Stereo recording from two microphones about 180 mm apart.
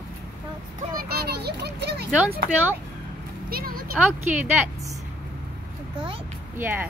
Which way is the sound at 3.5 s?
55° right (ahead or behind).